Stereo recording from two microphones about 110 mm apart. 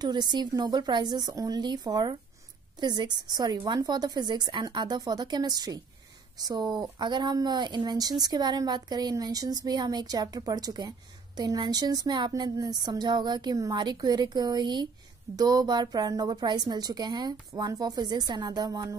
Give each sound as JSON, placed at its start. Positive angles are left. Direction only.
{"t": 0.0, "sound": "speech", "side_deg": -40}